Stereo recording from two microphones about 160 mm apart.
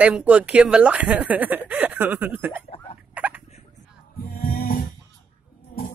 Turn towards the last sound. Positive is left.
turn(degrees=60)  # may be behind; listen again after turning